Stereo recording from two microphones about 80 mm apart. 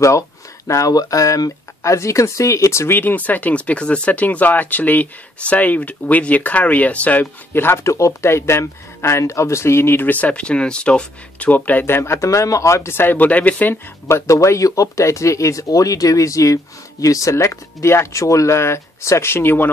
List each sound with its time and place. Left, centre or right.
0.7 s speech: left
3.0 s speech: left
14.0 s speech: left